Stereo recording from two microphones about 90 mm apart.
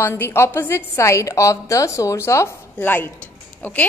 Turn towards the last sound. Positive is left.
turn(degrees=15)  # may be behind; listen again after turning